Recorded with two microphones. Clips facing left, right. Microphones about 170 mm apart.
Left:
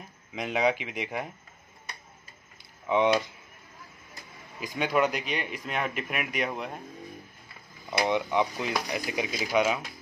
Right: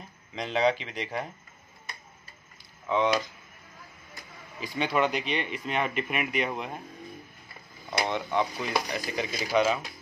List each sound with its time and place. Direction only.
0.3 s speech: 10° left (ahead or behind)
2.9 s speech: 20° left (ahead or behind)
4.7 s speech: 5° left (ahead or behind)
7.9 s speech: 10° left (ahead or behind)